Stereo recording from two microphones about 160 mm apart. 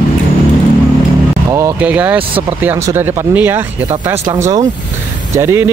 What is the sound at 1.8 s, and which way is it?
Speech, 10° right (ahead or behind).